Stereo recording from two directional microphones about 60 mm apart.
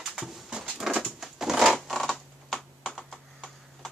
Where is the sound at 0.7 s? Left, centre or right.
Centre.